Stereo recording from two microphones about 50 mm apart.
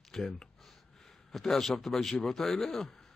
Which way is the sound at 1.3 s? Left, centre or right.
Centre.